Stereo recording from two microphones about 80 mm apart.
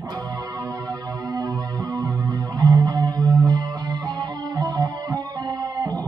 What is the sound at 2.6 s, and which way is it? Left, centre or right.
Music, right.